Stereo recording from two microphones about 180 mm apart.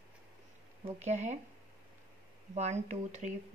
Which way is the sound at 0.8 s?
40° right (ahead or behind).